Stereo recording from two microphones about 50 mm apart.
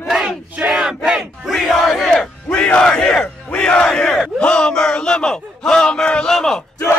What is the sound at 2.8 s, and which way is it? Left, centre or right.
Battle cry, centre.